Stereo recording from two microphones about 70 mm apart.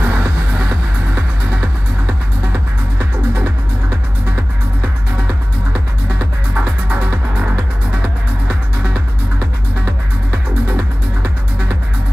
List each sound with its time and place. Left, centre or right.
0.0 s music: right
6.1 s music: right